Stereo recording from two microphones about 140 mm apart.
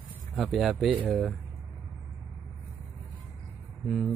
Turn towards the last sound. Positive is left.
turn(degrees=5)  # may be behind; listen again after turning